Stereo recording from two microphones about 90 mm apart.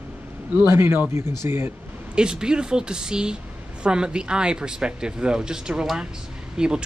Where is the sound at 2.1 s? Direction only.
10° right (ahead or behind).